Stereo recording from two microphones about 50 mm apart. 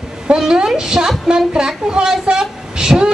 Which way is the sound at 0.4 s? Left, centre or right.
Centre.